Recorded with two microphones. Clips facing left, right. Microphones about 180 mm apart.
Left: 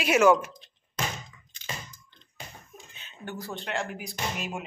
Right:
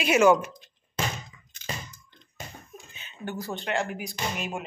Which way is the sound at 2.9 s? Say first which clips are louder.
Right 3 dB; 5° right (ahead or behind).